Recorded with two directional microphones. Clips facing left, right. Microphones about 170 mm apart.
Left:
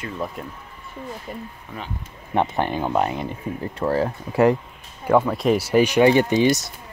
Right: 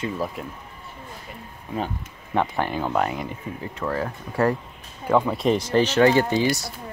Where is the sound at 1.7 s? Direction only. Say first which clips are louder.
Right 8 dB; 15° right (ahead or behind).